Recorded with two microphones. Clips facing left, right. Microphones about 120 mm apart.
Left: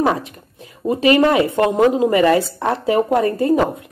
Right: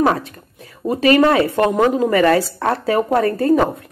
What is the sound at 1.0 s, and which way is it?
A woman's voice, 20° left (ahead or behind).